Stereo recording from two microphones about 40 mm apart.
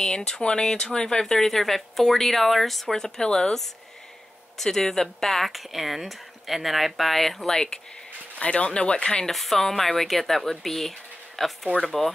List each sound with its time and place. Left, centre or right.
0.0 s speech: centre
2.9 s speech: centre
4.6 s speech: centre
7.5 s speech: centre
8.4 s speech: left
9.3 s speech: centre